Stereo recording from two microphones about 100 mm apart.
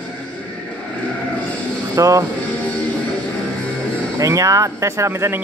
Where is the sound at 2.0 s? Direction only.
30° right (ahead or behind).